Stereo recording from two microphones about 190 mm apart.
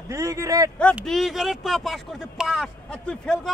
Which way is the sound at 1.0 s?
Centre (ahead or behind).